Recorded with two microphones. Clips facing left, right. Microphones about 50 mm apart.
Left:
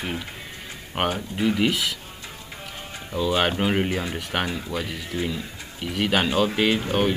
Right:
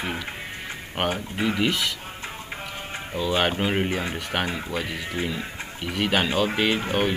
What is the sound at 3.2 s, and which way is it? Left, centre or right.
Speech, centre.